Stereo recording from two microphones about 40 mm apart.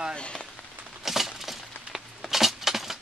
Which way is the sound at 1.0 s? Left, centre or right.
Centre.